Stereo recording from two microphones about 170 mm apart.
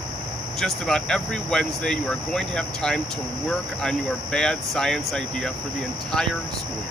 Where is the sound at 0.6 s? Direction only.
5° left (ahead or behind).